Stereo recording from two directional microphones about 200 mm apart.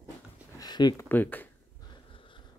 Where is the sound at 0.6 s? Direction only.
20° left (ahead or behind).